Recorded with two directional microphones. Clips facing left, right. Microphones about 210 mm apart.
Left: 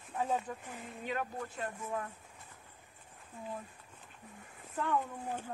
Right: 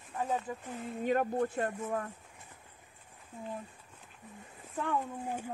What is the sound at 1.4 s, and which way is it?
Speech, 50° right (ahead or behind).